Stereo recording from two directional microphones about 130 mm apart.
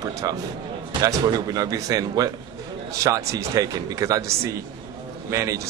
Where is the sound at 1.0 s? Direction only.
30° right (ahead or behind).